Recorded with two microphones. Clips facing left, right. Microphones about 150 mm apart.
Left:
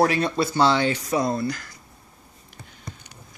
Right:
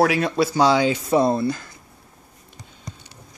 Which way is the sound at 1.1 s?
25° right (ahead or behind).